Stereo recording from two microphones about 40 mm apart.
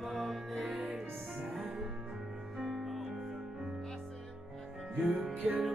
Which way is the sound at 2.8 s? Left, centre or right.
Centre.